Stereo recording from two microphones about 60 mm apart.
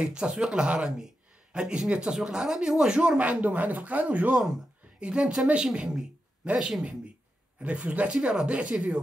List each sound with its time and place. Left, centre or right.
0.0 s a man's voice: centre
5.0 s a man's voice: centre
7.6 s speech: right